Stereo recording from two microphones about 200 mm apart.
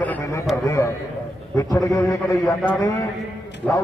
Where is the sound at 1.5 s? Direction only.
15° left (ahead or behind).